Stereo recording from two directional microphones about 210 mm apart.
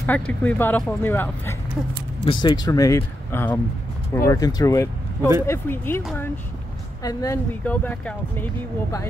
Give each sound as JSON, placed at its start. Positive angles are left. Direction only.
{"t": 0.0, "sound": "speech", "side_deg": 10}
{"t": 2.2, "sound": "speech", "side_deg": 20}